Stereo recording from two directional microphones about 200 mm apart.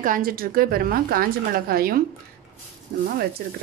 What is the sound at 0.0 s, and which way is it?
A woman's voice, 45° right (ahead or behind).